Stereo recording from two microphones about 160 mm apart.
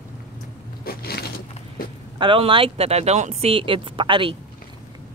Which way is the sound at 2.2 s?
30° right (ahead or behind).